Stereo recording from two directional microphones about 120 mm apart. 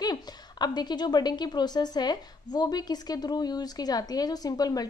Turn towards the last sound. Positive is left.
turn(degrees=30)  # may be behind; listen again after turning